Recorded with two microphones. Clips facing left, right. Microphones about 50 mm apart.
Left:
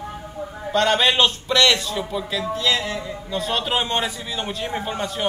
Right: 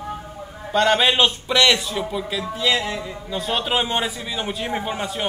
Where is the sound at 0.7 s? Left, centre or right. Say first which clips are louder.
Right 1 dB; centre.